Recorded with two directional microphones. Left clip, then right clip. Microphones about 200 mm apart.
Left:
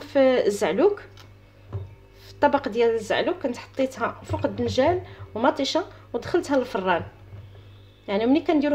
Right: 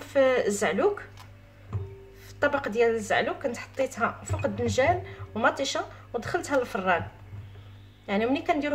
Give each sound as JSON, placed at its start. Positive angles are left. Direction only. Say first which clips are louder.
{"t": 0.0, "sound": "speech", "louder": "left 3 dB", "side_deg": 25}
{"t": 2.2, "sound": "a woman's voice", "louder": "left 5 dB", "side_deg": 25}
{"t": 8.1, "sound": "a woman's voice", "louder": "left 4 dB", "side_deg": 25}